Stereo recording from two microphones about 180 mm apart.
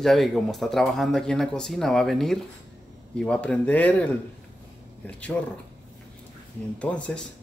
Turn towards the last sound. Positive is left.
turn(degrees=5)  # may be behind; listen again after turning